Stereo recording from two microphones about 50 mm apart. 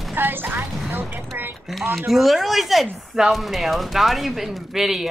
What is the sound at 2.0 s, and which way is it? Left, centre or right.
Speech, centre.